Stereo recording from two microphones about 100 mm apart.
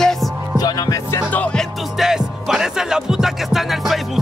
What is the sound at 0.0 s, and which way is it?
Music, 5° left (ahead or behind).